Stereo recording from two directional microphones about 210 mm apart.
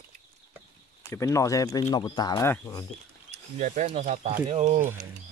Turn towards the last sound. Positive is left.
turn(degrees=-30)  # may be behind; listen again after turning